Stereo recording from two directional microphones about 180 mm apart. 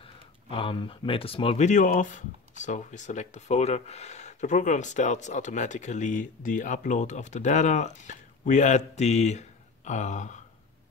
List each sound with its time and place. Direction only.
0.0 s speech: 30° left (ahead or behind)